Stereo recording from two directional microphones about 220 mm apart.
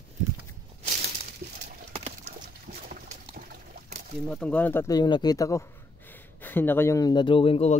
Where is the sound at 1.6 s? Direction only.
30° right (ahead or behind).